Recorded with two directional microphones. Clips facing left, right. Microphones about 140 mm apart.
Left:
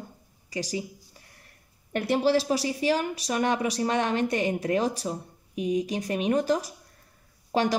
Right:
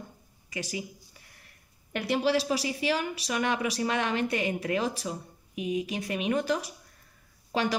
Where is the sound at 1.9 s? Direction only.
45° left (ahead or behind).